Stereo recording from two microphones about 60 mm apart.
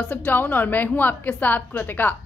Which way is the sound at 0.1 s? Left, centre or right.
Left.